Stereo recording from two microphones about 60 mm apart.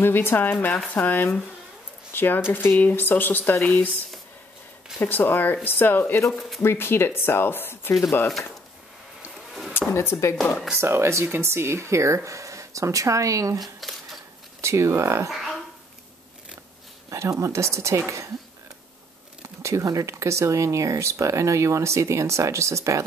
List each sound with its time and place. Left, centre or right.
0.0 s speech: left
2.8 s speech: left
5.0 s speech: left
9.5 s a sound: centre
9.8 s speech: left
10.8 s speech: right
13.6 s speech: centre
14.6 s speech: right
15.2 s a sound: centre
17.1 s speech: right
19.6 s speech: right